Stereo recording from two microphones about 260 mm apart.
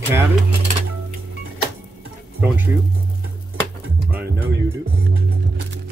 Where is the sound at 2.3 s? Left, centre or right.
Centre.